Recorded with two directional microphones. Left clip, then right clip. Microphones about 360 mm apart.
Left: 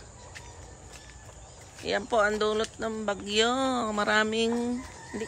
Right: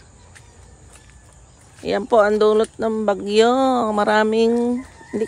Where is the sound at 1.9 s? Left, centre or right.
Centre.